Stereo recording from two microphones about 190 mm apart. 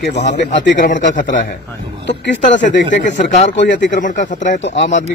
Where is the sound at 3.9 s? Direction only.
45° left (ahead or behind).